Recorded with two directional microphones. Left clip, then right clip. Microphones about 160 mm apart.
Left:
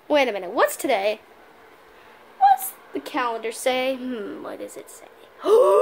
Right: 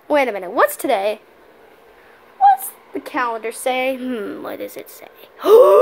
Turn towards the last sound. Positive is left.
turn(degrees=-30)  # may be behind; listen again after turning